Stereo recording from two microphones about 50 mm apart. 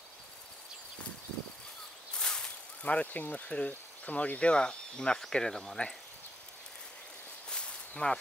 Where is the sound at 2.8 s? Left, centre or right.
Left; by 5.9 s centre.